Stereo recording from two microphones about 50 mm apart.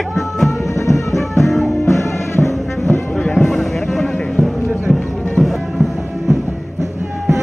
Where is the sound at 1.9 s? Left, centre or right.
Left.